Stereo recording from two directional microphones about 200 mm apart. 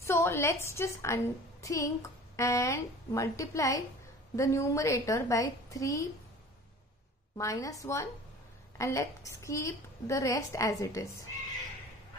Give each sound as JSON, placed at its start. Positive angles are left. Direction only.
{"t": 0.0, "sound": "a woman's voice", "side_deg": 15}
{"t": 7.3, "sound": "a woman's voice", "side_deg": 15}